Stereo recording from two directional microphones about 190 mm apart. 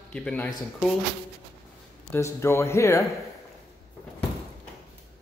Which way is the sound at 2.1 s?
15° left (ahead or behind).